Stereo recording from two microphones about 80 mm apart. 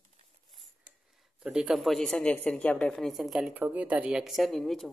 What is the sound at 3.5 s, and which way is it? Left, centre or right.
Speech, centre.